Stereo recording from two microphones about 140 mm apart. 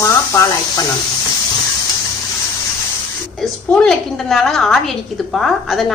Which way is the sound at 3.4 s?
5° left (ahead or behind).